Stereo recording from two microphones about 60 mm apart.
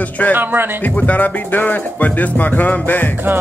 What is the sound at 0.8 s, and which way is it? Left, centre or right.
Speech, left.